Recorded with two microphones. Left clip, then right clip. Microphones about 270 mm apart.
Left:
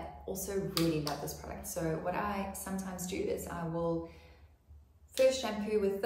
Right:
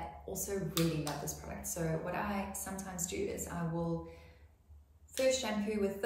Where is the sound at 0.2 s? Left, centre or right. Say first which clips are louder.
Left 4 dB; centre.